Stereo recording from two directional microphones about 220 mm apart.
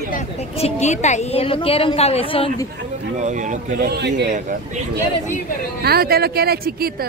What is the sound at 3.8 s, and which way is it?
Speech, 50° right (ahead or behind).